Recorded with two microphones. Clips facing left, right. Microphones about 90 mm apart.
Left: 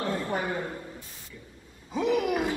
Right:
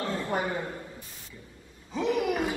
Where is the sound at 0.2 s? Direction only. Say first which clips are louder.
Even; 20° right (ahead or behind).